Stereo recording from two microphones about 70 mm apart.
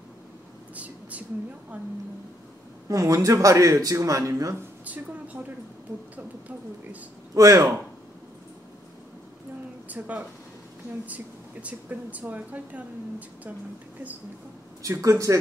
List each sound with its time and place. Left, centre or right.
0.7 s a sound: right
2.9 s speech: right
4.8 s speech: right
7.3 s speech: right
9.8 s speech: right
14.8 s speech: right